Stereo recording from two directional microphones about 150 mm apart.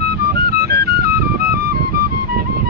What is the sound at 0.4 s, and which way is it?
Music, 90° right.